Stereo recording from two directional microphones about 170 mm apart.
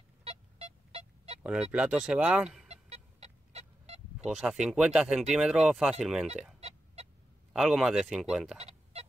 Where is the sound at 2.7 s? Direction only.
40° right (ahead or behind).